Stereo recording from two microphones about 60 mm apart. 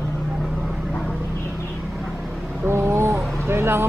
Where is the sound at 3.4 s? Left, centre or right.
Right.